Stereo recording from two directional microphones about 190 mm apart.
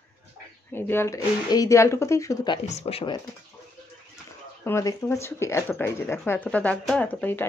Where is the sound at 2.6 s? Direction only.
35° left (ahead or behind).